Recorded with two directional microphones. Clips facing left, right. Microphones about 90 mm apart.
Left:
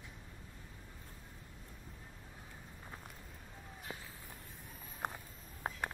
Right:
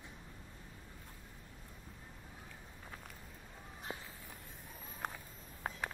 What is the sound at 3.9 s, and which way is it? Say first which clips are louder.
Walk: right 2 dB; 20° right (ahead or behind).